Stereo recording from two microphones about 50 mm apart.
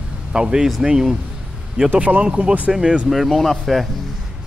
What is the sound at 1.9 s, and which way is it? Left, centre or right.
Speech, right.